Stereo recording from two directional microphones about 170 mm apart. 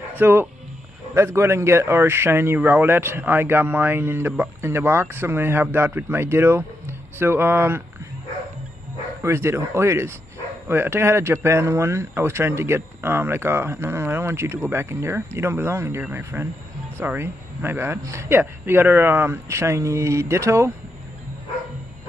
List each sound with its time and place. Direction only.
0.2 s a man's voice: 10° right (ahead or behind)
9.2 s a man's voice: 15° right (ahead or behind)